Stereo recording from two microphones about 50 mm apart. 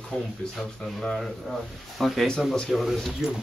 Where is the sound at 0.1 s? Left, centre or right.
Centre.